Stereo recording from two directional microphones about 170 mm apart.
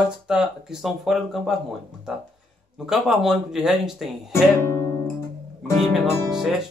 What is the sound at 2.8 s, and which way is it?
Speech, centre (ahead or behind).